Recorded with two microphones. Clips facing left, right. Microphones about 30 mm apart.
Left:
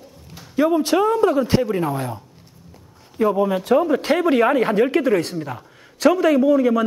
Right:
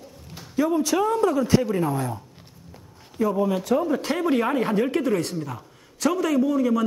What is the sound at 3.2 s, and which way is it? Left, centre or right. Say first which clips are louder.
A man's voice: left 4 dB; left.